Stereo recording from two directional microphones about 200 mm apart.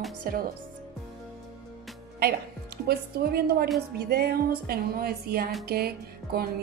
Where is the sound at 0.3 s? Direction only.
45° right (ahead or behind).